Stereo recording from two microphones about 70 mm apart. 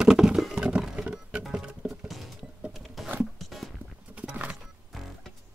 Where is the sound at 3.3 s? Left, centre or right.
Centre.